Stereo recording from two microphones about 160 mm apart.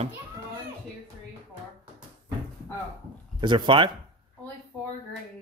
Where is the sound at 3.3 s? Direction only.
30° right (ahead or behind).